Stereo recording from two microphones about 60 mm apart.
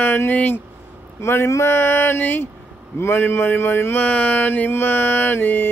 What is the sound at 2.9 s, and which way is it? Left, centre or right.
Mantra, left.